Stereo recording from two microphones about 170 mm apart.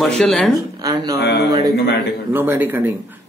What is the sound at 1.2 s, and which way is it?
Speech, 75° left (ahead or behind).